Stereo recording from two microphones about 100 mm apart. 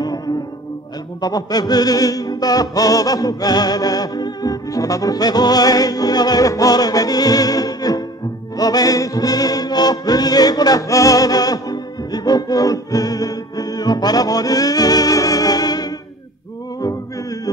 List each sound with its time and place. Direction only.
1.2 s music: 40° left (ahead or behind)